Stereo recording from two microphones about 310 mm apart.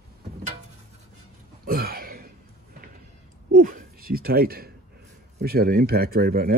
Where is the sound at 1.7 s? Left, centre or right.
Right.